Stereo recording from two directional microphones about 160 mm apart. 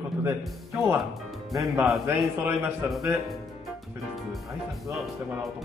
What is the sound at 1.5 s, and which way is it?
Speech, centre (ahead or behind).